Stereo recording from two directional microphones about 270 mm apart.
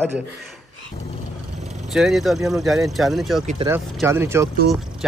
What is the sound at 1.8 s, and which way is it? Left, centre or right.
Speech, centre.